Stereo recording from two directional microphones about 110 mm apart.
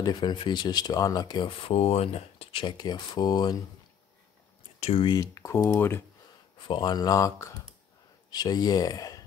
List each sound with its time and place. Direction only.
0.0 s speech: 45° left (ahead or behind)
1.6 s speech: 65° left (ahead or behind)
2.8 s speech: 40° left (ahead or behind)
4.7 s speech: 70° left (ahead or behind)
5.0 s speech: 35° left (ahead or behind); by 6.0 s 20° left (ahead or behind)
6.7 s speech: 40° left (ahead or behind)